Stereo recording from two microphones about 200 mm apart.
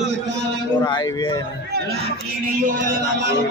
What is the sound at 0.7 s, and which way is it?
Speech, 20° left (ahead or behind).